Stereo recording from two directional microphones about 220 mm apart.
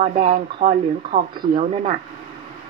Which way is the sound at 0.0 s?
40° right (ahead or behind).